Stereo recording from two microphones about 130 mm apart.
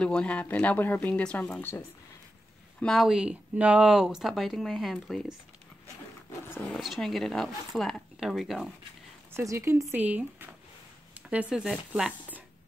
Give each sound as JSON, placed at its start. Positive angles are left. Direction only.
{"t": 0.0, "sound": "speech", "side_deg": 10}
{"t": 2.8, "sound": "speech", "side_deg": 0}
{"t": 6.7, "sound": "speech", "side_deg": 0}
{"t": 9.3, "sound": "speech", "side_deg": -20}
{"t": 11.1, "sound": "a sound", "side_deg": -10}
{"t": 11.5, "sound": "speech", "side_deg": -5}